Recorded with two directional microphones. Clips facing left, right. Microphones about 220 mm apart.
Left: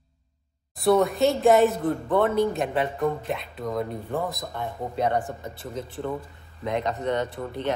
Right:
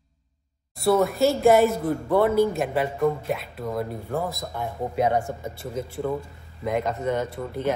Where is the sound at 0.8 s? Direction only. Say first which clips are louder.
Even; centre (ahead or behind).